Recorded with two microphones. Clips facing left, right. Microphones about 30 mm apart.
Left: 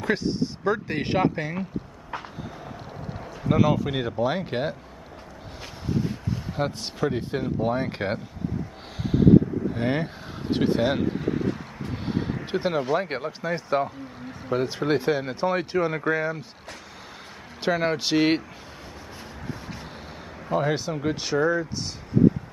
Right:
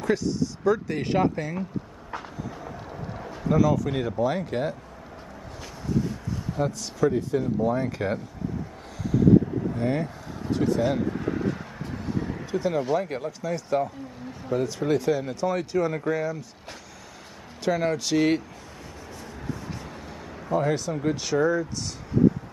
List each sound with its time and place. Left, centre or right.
0.0 s speech: left
3.4 s speech: left
3.9 s speech: left
5.9 s a sound: left
6.6 s speech: left
9.8 s speech: left
11.9 s a sound: left
12.9 s speech: left
17.6 s speech: left
20.4 s speech: left